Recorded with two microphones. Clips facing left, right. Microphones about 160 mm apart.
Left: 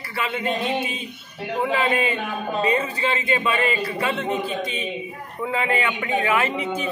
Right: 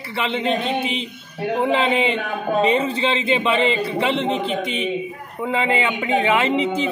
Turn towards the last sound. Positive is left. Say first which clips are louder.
# right 4 dB
turn(degrees=-25)  # may be behind; listen again after turning